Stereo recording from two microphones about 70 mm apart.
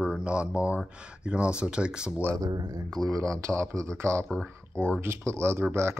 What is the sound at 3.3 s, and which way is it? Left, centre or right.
Speech, right.